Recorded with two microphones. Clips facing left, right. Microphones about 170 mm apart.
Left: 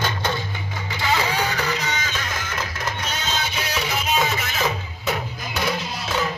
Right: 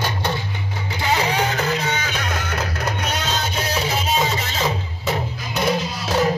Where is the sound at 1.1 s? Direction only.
45° right (ahead or behind); by 2.6 s 60° right (ahead or behind).